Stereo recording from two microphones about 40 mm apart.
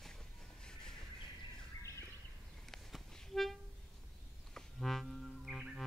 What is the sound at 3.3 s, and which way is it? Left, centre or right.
Music, centre.